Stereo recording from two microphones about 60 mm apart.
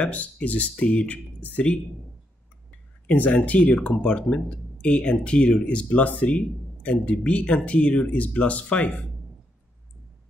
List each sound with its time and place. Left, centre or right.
0.0 s speech: left
3.1 s speech: left